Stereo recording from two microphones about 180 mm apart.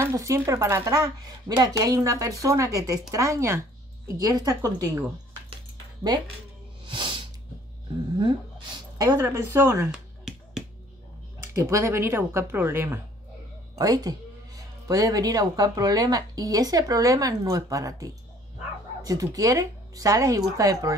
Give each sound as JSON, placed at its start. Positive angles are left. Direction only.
{"t": 0.0, "sound": "speech", "side_deg": -15}
{"t": 6.9, "sound": "snort", "side_deg": -25}
{"t": 8.7, "sound": "speech", "side_deg": -20}
{"t": 11.5, "sound": "speech", "side_deg": -15}